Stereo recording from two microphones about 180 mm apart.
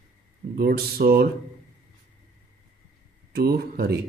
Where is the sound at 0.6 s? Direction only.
55° right (ahead or behind).